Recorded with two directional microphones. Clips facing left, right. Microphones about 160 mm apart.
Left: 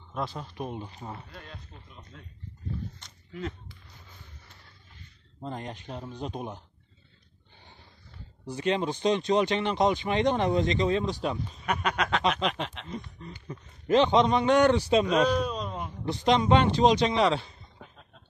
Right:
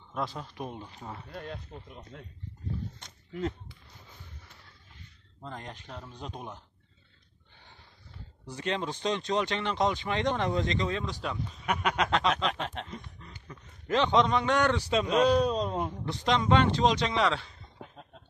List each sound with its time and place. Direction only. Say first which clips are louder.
0.1 s speech: left 1 dB; centre (ahead or behind)
0.7 s speech: left 3 dB; 15° left (ahead or behind)
1.3 s speech: right 6 dB; 50° right (ahead or behind)
3.0 s a sound: right 3 dB; 40° right (ahead or behind)
5.4 s a man's voice: left 5 dB; 20° left (ahead or behind)
8.5 s speech: left 5 dB; 15° left (ahead or behind)
11.6 s a sound: even; 10° right (ahead or behind)
12.2 s a man's voice: left 1 dB; 20° left (ahead or behind)
15.0 s speech: right 1 dB; 30° right (ahead or behind)
16.1 s speech: left 4 dB; 15° left (ahead or behind)